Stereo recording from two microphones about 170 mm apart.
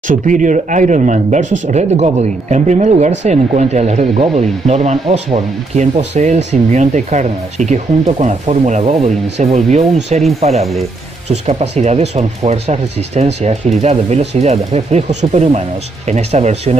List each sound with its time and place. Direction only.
0.1 s speech: 50° right (ahead or behind)